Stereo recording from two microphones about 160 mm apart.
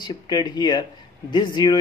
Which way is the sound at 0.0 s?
25° left (ahead or behind).